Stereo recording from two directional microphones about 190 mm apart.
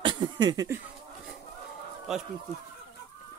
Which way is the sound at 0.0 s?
25° right (ahead or behind).